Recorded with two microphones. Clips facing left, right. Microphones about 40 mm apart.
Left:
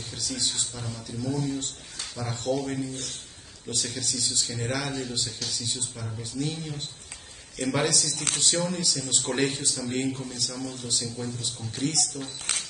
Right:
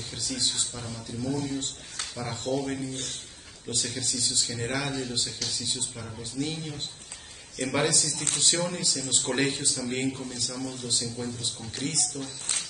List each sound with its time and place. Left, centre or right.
0.1 s a man's voice: centre
8.1 s speech: left
8.4 s a man's voice: centre
12.3 s speech: left